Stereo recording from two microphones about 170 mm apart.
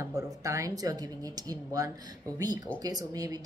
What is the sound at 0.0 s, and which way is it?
A woman's voice, 20° right (ahead or behind).